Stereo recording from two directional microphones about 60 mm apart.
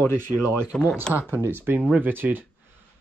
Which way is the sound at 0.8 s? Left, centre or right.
Centre.